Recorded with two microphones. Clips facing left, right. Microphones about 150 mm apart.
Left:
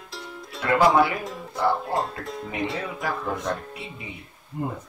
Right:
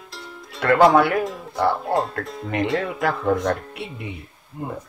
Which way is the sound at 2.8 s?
75° right (ahead or behind).